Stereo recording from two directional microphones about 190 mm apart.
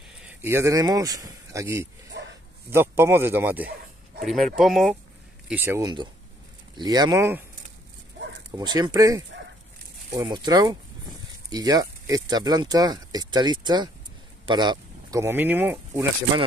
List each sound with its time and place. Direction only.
0.3 s speech: 10° right (ahead or behind)
2.1 s dog: 65° right (ahead or behind)
2.7 s speech: 10° right (ahead or behind)
5.5 s speech: 10° right (ahead or behind)
8.5 s speech: 20° right (ahead or behind)